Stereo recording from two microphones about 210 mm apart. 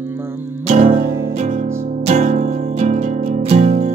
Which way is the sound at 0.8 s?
35° right (ahead or behind).